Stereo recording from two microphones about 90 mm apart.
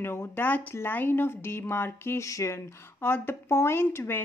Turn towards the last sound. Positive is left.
turn(degrees=25)  # may be behind; listen again after turning